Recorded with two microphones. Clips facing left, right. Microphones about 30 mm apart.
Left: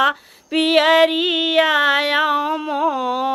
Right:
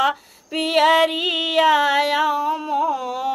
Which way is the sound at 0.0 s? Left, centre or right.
Left.